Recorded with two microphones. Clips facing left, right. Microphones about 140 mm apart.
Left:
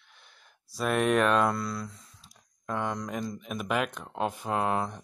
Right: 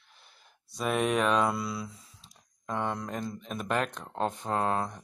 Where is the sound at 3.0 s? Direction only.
5° left (ahead or behind).